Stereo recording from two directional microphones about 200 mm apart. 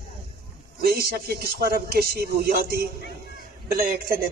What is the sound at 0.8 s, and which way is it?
Speech, 50° right (ahead or behind).